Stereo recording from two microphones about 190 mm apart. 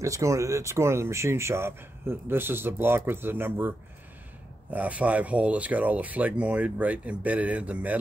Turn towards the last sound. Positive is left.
turn(degrees=-5)  # may be behind; listen again after turning